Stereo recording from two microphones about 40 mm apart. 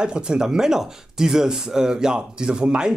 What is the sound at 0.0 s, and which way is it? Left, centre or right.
Speech, right.